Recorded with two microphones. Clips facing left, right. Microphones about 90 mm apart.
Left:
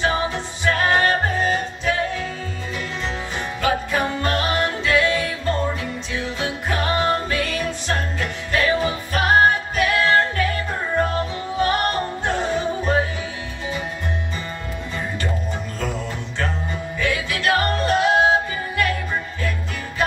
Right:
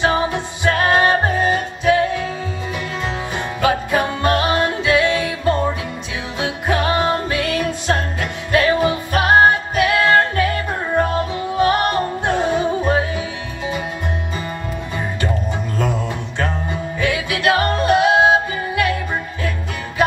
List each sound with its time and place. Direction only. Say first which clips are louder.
0.0 s music: right 4 dB; 20° right (ahead or behind)
3.6 s music: right 4 dB; 20° right (ahead or behind)
9.9 s music: right 3 dB; 50° right (ahead or behind)
11.5 s music: right 4 dB; 20° right (ahead or behind)
15.8 s music: right 6 dB; 20° right (ahead or behind)